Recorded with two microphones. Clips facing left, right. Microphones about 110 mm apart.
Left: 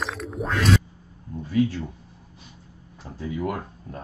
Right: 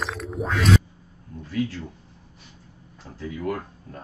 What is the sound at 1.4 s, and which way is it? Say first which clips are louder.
Speech: left 5 dB; 15° left (ahead or behind).